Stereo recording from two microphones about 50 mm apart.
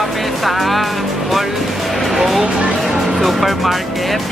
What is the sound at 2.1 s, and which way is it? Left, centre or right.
Music, centre.